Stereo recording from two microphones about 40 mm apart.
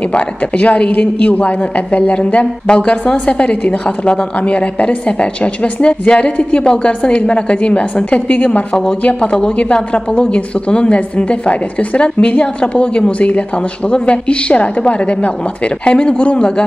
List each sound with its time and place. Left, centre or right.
0.1 s a woman's voice: left